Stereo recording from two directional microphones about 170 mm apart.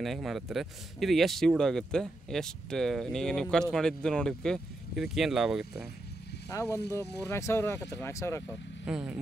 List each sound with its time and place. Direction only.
0.0 s speech: centre (ahead or behind)
6.5 s speech: 20° left (ahead or behind)
8.8 s speech: 5° right (ahead or behind)